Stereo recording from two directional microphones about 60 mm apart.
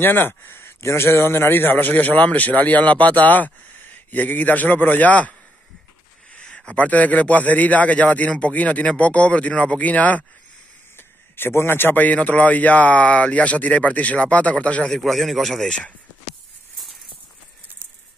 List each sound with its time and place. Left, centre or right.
0.0 s a man's voice: left
6.3 s a man's voice: centre
11.0 s a man's voice: left
14.9 s speech: centre